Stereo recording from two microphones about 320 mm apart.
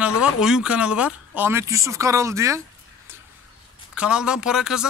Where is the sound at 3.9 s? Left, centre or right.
Centre.